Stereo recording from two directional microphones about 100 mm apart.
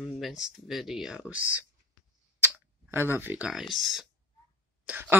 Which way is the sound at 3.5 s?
Centre (ahead or behind).